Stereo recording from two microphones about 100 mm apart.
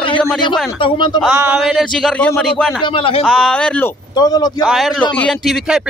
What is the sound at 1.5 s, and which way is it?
Speech, 5° right (ahead or behind).